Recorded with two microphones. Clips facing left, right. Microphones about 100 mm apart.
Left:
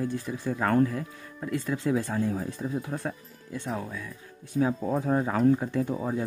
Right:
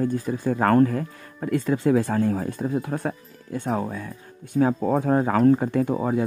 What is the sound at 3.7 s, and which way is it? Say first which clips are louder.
Speech: right 7 dB; 40° right (ahead or behind).